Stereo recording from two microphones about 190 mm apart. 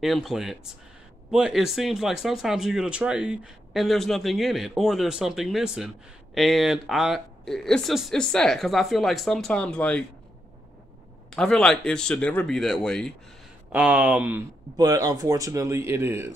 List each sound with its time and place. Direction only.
0.0 s speech: centre (ahead or behind)
11.3 s speech: 5° left (ahead or behind)
14.8 s speech: 20° right (ahead or behind)